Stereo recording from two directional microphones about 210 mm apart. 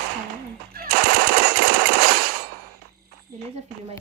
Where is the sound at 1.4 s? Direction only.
55° right (ahead or behind).